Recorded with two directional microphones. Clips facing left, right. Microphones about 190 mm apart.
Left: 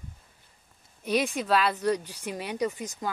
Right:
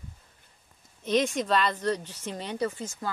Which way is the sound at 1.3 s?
5° left (ahead or behind).